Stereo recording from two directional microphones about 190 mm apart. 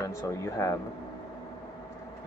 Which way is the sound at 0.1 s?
15° left (ahead or behind).